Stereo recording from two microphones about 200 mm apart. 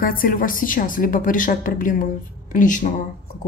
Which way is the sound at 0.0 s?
45° left (ahead or behind).